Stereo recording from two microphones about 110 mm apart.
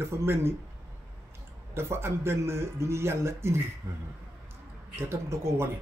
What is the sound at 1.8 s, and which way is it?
A man's voice, 25° right (ahead or behind).